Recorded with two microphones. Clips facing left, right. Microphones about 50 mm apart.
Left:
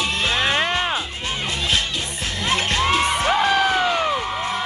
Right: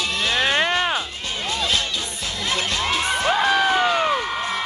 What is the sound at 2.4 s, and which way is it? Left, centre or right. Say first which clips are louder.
Music: left 4 dB; left.